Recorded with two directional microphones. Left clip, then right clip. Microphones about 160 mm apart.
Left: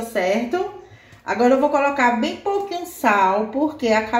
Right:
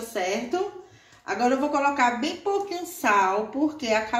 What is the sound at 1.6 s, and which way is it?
A woman's voice, 45° left (ahead or behind).